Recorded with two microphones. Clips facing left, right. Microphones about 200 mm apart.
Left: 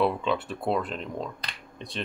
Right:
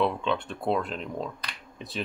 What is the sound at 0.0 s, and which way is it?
Speech, 5° left (ahead or behind).